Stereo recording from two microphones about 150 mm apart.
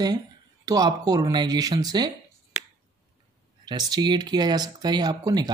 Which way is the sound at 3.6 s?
30° right (ahead or behind).